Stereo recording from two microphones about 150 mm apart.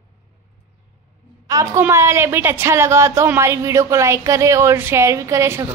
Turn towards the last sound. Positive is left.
turn(degrees=-20)  # may be behind; listen again after turning